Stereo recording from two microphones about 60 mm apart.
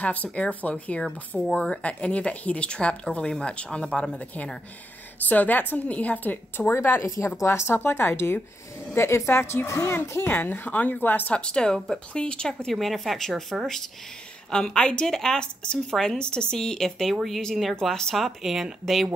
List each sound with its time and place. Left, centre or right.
0.0 s a woman's voice: left
5.3 s a woman's voice: left
6.7 s a woman's voice: left
11.3 s a woman's voice: centre
12.7 s a woman's voice: centre
14.5 s a woman's voice: centre